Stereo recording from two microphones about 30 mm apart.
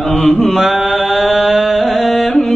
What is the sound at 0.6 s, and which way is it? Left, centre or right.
Speech, centre.